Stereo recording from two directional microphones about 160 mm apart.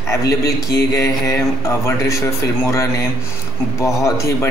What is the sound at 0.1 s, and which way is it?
Speech, 20° left (ahead or behind).